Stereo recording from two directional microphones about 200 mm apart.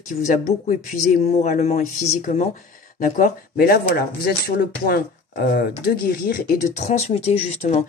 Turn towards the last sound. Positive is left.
turn(degrees=35)  # may be behind; listen again after turning